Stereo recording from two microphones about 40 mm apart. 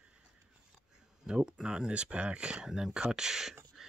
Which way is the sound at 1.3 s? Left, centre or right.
Right.